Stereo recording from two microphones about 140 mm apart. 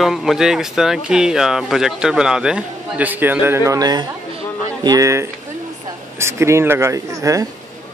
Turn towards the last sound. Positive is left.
turn(degrees=-25)  # may be behind; listen again after turning